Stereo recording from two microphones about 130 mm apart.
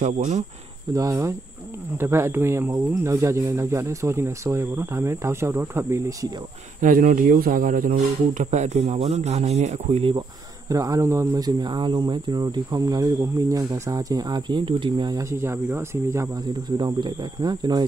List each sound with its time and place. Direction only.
0.0 s speech: 65° right (ahead or behind)
0.9 s speech: 25° right (ahead or behind)
6.8 s speech: 90° right
8.4 s speech: 65° right (ahead or behind)
10.7 s speech: 25° right (ahead or behind)
16.6 s speech: 35° right (ahead or behind)